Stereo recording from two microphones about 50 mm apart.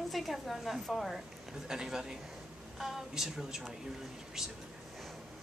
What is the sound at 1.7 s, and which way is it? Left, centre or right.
Speech, centre.